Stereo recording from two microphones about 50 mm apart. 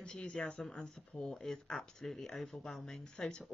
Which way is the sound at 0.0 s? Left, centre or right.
Centre.